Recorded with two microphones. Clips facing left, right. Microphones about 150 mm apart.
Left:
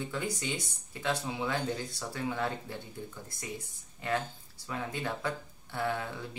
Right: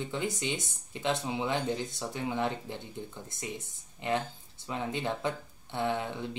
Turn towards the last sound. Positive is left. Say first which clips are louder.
# right 3 dB
turn(degrees=-20)  # may be behind; listen again after turning